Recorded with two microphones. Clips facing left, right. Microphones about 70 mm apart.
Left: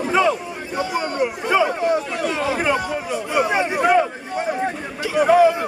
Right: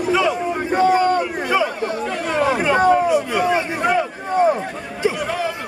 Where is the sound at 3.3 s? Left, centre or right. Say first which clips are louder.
Right 1 dB; centre.